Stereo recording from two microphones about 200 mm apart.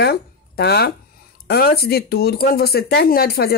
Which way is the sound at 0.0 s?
55° left (ahead or behind).